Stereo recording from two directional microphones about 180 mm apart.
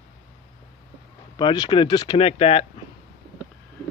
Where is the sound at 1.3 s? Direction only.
25° left (ahead or behind).